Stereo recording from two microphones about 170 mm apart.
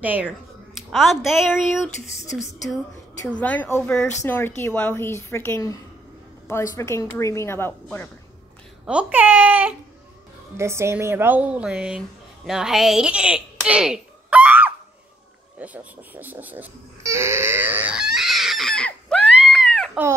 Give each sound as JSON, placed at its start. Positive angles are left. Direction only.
{"t": 0.0, "sound": "a woman's voice", "side_deg": -10}
{"t": 8.8, "sound": "a woman's voice", "side_deg": -10}
{"t": 15.6, "sound": "crying", "side_deg": -10}